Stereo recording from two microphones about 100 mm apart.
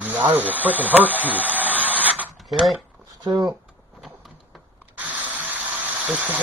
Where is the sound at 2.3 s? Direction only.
Centre (ahead or behind).